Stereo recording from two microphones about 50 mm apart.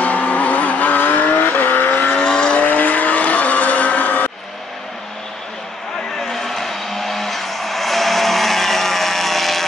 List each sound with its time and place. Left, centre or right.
0.0 s vehicle: left
2.1 s vehicle: centre
2.6 s vehicle: left
6.3 s vehicle: centre